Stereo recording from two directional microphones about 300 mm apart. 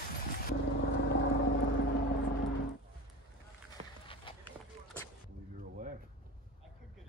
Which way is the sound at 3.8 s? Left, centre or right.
Centre.